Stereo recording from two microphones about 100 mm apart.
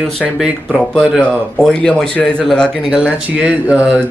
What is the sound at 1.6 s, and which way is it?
Speech, 5° left (ahead or behind).